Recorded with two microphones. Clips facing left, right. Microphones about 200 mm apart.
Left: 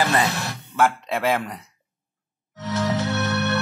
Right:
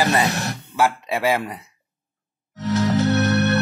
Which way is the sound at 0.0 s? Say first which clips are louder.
Right 2 dB; 15° right (ahead or behind).